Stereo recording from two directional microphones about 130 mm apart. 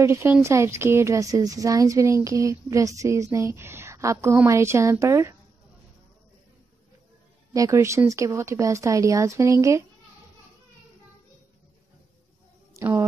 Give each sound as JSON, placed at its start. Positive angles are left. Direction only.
{"t": 0.0, "sound": "a woman's voice", "side_deg": -20}
{"t": 7.5, "sound": "a woman's voice", "side_deg": -25}
{"t": 12.7, "sound": "a sound", "side_deg": -20}